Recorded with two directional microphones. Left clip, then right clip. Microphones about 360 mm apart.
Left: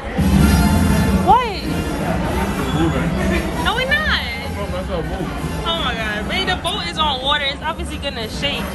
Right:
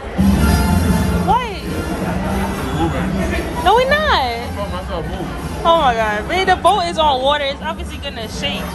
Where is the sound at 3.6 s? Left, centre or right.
Centre.